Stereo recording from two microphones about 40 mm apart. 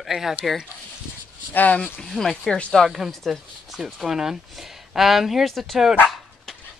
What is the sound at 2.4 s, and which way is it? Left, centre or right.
Speech, centre.